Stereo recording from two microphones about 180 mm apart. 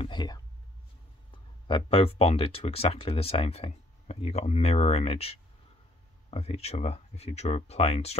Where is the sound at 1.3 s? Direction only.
30° left (ahead or behind).